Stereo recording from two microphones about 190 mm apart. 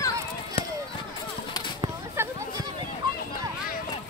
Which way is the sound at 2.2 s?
15° right (ahead or behind).